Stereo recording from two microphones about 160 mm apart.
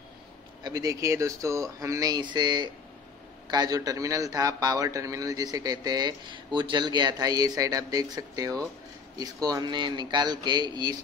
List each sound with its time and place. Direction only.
0.7 s a man's voice: 25° right (ahead or behind)